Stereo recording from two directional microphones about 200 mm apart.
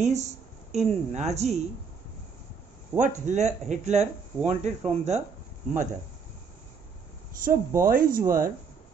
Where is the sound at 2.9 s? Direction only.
40° right (ahead or behind).